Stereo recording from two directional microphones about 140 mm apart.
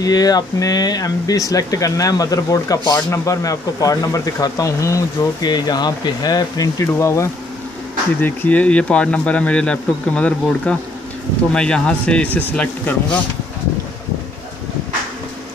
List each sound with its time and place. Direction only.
0.0 s a man's voice: 25° left (ahead or behind); by 13.2 s 10° left (ahead or behind)